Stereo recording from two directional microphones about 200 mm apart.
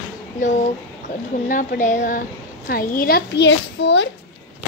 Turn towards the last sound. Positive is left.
turn(degrees=65)  # may be behind; listen again after turning